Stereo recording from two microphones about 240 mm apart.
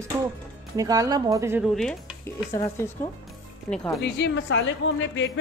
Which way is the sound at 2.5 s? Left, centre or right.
Centre.